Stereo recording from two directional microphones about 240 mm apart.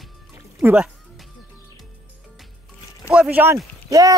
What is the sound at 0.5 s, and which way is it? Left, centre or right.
Music, centre.